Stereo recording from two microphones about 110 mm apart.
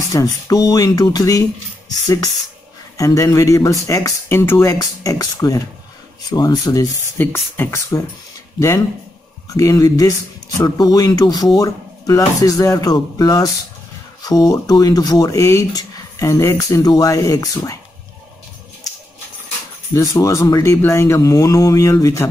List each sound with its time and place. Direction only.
0.1 s speech: 35° left (ahead or behind)
3.0 s speech: 30° left (ahead or behind)
7.2 s speech: 20° left (ahead or behind)
19.9 s speech: 30° left (ahead or behind)